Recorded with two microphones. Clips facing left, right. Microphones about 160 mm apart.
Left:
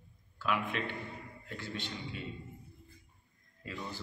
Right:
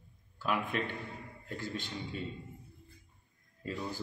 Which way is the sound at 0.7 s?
45° right (ahead or behind).